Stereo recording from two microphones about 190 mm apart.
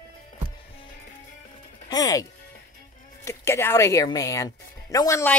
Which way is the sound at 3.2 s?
15° left (ahead or behind).